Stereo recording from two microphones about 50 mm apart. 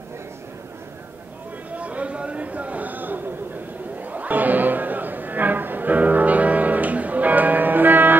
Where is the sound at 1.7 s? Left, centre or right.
Right.